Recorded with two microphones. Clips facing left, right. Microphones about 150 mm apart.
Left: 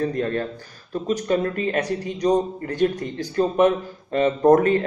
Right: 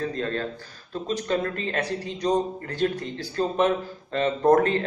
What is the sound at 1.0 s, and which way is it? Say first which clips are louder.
A man's voice: left 4 dB; 15° left (ahead or behind).